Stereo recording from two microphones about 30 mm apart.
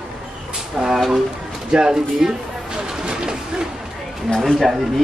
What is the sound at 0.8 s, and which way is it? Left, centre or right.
A woman's voice, centre.